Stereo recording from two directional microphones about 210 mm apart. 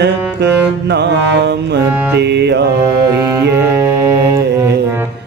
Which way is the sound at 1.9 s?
5° right (ahead or behind).